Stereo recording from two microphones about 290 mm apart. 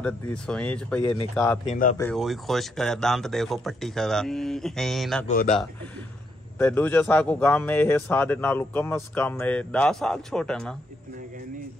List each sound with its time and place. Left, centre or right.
0.0 s speech: centre
1.7 s speech: left
2.0 s speech: centre
5.2 s speech: left
6.6 s a man's voice: centre